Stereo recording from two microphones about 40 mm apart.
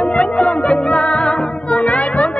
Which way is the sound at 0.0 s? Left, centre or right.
Left.